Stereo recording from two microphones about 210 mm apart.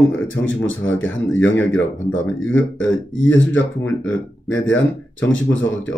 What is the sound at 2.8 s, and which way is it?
Speech, 65° left (ahead or behind).